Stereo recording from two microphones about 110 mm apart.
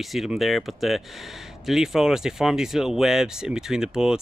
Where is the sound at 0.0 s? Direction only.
Centre (ahead or behind).